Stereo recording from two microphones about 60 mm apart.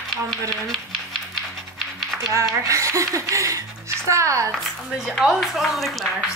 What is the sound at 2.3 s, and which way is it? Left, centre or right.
Speech, right.